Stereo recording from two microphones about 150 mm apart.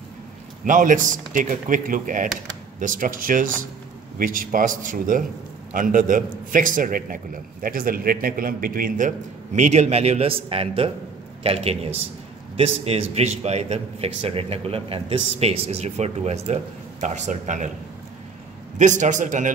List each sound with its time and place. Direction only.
0.7 s a man's voice: 60° right (ahead or behind)
18.8 s a man's voice: 55° right (ahead or behind)